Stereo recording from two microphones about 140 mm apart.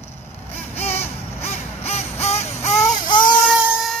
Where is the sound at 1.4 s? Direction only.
50° left (ahead or behind).